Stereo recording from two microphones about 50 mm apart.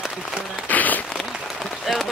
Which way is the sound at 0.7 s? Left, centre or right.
Left.